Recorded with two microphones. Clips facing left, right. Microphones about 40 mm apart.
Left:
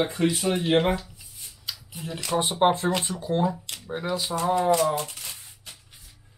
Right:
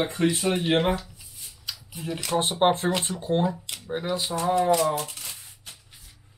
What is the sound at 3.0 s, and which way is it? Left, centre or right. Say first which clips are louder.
Speech: right 1 dB; right.